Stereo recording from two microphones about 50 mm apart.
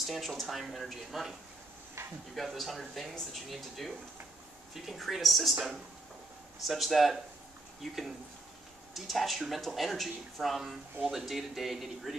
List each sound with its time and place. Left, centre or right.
0.0 s speech: centre
2.0 s frying: right
2.3 s speech: centre